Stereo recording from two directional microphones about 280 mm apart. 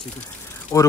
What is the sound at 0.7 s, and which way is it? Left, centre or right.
Speech, centre.